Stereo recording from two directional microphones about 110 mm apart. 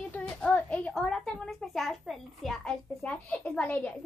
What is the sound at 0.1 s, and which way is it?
A child's voice, 10° left (ahead or behind).